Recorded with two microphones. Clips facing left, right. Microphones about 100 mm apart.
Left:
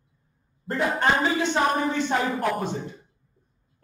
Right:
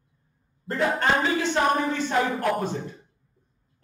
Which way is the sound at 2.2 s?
Centre (ahead or behind).